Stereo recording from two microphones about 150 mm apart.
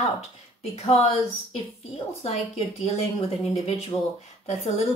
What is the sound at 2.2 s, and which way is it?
Speech, 45° left (ahead or behind).